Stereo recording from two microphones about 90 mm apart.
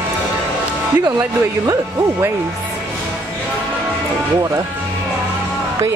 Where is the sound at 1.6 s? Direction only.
40° right (ahead or behind).